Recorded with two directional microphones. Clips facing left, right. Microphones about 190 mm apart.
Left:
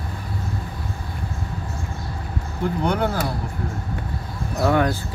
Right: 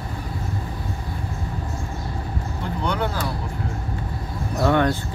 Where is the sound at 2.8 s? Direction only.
45° left (ahead or behind).